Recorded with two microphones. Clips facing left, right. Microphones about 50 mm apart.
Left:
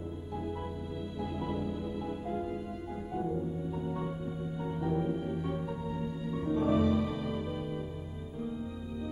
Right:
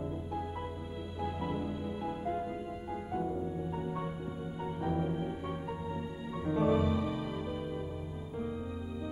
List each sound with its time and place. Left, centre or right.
1.2 s music: centre
6.7 s music: centre